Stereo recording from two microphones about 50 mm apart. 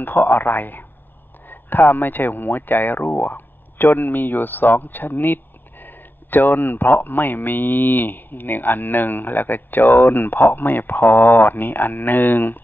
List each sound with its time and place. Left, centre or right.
0.0 s speech: left